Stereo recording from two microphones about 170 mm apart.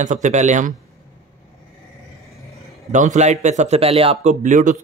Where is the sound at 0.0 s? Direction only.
45° right (ahead or behind).